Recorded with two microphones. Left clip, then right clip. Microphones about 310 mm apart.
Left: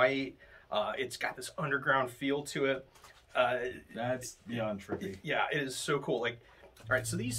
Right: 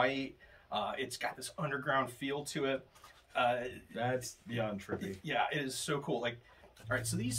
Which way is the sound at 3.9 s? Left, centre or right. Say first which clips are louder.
Right 2 dB; centre.